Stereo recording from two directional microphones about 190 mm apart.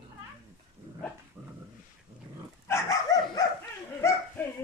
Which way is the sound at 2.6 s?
15° left (ahead or behind).